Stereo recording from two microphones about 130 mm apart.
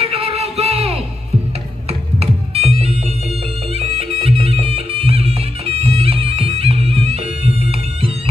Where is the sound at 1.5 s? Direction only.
50° right (ahead or behind).